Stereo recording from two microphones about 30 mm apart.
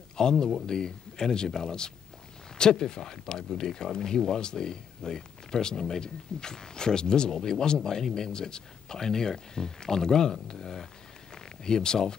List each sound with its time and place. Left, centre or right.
0.2 s speech: left